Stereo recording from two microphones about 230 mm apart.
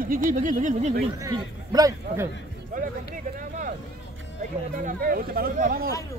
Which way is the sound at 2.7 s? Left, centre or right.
Right.